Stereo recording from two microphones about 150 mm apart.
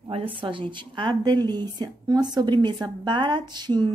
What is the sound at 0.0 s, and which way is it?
A woman's voice, 35° right (ahead or behind).